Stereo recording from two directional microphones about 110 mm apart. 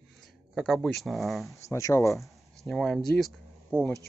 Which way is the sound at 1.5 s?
30° left (ahead or behind).